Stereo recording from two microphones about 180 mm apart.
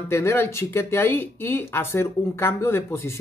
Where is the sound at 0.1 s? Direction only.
15° left (ahead or behind).